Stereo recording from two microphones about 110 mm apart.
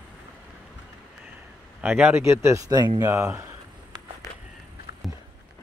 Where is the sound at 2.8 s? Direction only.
40° right (ahead or behind).